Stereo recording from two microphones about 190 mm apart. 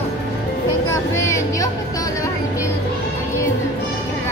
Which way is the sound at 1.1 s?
15° left (ahead or behind).